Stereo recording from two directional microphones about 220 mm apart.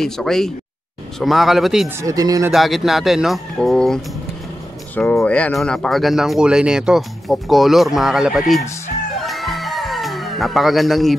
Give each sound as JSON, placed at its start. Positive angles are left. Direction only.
{"t": 0.0, "sound": "speech", "side_deg": 0}
{"t": 2.0, "sound": "speech", "side_deg": -15}
{"t": 2.5, "sound": "speech", "side_deg": 0}
{"t": 9.2, "sound": "music", "side_deg": 0}